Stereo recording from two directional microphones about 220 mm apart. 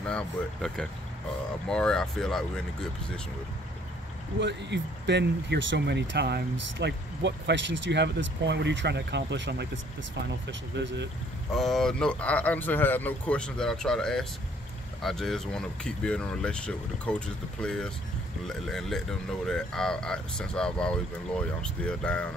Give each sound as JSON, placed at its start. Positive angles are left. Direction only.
{"t": 0.0, "sound": "speech", "side_deg": 5}
{"t": 4.4, "sound": "speech", "side_deg": -50}
{"t": 10.7, "sound": "speech", "side_deg": -55}
{"t": 11.5, "sound": "speech", "side_deg": 0}